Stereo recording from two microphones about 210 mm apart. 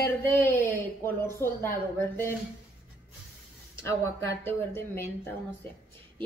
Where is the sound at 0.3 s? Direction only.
10° left (ahead or behind).